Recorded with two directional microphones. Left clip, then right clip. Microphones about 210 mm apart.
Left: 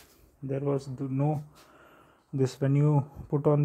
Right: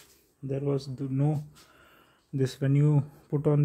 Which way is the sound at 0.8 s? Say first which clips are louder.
Even; 15° right (ahead or behind).